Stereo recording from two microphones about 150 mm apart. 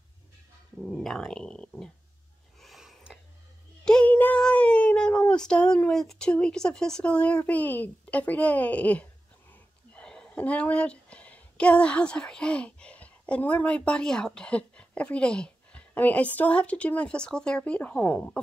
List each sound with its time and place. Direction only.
0.8 s speech: centre (ahead or behind)
2.6 s a sound: centre (ahead or behind)
3.8 s a woman's voice: 5° left (ahead or behind)